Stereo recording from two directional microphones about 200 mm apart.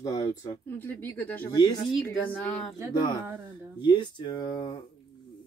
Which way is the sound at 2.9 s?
20° left (ahead or behind).